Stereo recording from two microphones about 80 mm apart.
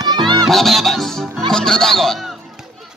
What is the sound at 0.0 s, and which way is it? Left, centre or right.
Music, right.